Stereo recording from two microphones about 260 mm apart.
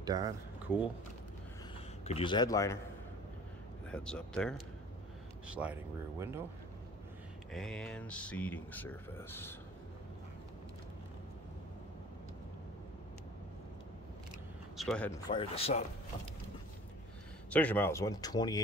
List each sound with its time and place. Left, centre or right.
0.0 s speech: centre
2.0 s speech: left
3.9 s speech: centre
7.5 s speech: centre
14.8 s speech: centre
15.3 s speech: left
17.5 s speech: centre